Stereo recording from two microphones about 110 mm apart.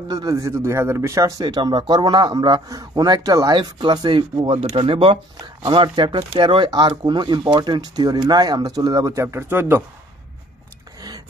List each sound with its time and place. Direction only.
0.1 s a man's voice: 35° right (ahead or behind)
1.4 s speech: 40° right (ahead or behind)
3.5 s speech: 45° right (ahead or behind); by 9.8 s 20° right (ahead or behind)
11.0 s a sound: 35° right (ahead or behind)